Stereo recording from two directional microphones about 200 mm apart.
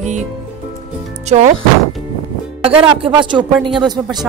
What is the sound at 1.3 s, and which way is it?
Speech, 35° right (ahead or behind).